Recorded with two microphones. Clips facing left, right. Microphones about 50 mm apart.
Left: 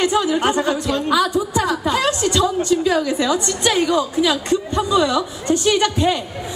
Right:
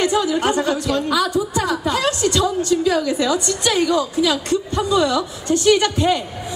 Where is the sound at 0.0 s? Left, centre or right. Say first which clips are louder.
Left 1 dB; left.